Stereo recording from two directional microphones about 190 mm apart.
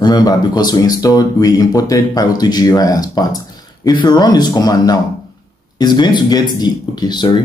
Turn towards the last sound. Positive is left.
turn(degrees=25)  # may be behind; listen again after turning